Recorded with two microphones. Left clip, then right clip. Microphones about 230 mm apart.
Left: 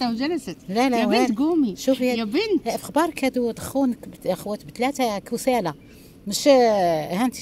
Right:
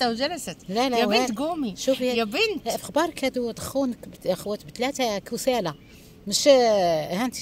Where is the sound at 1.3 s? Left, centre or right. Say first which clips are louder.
Left 6 dB; right.